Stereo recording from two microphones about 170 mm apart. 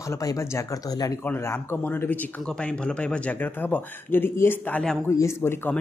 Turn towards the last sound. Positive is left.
turn(degrees=15)  # may be behind; listen again after turning